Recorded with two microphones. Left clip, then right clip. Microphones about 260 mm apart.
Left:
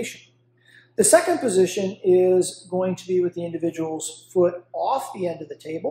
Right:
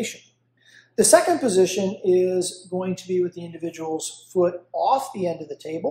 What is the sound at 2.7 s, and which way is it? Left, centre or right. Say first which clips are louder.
Speech: left 3 dB; centre.